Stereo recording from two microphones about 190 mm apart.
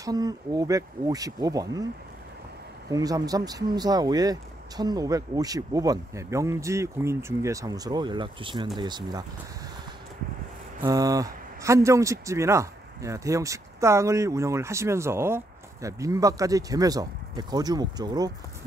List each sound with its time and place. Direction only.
0.0 s speech: 20° right (ahead or behind)
2.9 s speech: 20° right (ahead or behind)
10.8 s speech: 20° right (ahead or behind)